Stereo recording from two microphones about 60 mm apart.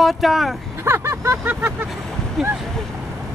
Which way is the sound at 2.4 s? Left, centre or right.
Centre.